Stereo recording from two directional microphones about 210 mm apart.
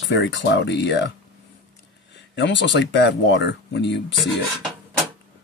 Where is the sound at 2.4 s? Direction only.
60° left (ahead or behind).